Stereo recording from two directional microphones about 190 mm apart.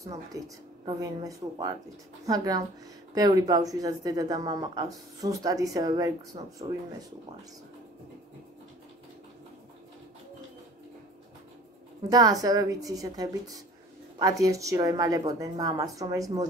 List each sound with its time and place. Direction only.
0.3 s speech: 20° right (ahead or behind)
12.1 s speech: 20° right (ahead or behind)